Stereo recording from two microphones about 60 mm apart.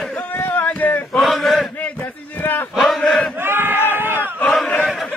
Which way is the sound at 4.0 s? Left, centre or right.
Right.